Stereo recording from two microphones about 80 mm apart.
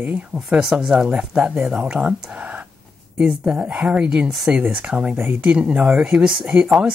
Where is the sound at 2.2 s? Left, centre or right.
Centre.